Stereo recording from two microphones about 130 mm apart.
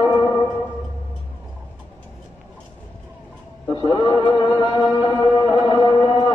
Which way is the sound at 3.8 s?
30° left (ahead or behind).